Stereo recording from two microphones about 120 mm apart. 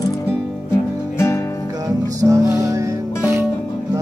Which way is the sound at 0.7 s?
20° left (ahead or behind).